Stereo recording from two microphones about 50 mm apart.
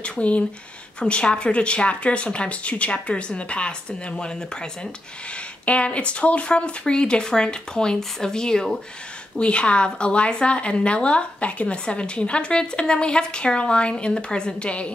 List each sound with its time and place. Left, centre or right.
0.0 s a woman's voice: left
5.7 s a woman's voice: left